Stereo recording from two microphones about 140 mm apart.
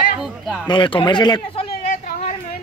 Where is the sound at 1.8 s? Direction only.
50° left (ahead or behind).